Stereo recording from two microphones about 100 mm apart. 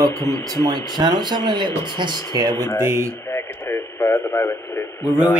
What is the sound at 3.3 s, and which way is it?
Speech, 25° left (ahead or behind).